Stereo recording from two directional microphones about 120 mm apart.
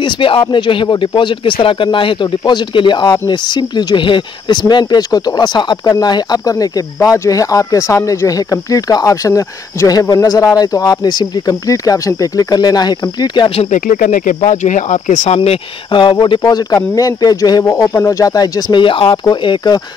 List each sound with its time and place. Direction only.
0.0 s speech: 45° left (ahead or behind)
13.6 s speech: 90° left; by 15.6 s 60° left (ahead or behind)
15.9 s speech: 40° left (ahead or behind)